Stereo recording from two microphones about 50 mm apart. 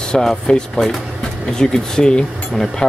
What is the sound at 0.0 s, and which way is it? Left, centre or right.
Speech, centre.